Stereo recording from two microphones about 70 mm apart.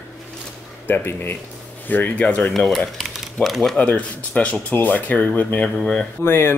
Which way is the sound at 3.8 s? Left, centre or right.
Centre.